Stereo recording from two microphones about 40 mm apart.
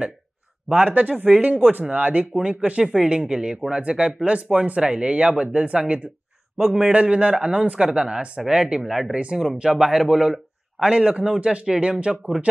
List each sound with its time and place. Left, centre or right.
0.8 s speech: right
2.8 s speech: centre
9.1 s speech: right